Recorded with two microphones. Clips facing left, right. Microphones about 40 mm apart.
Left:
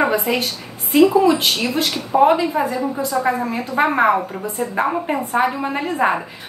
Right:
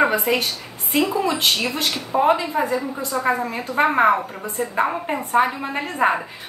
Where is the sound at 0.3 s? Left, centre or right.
Centre.